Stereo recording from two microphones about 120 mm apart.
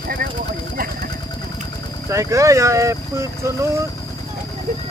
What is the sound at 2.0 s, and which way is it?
Speech, 25° right (ahead or behind).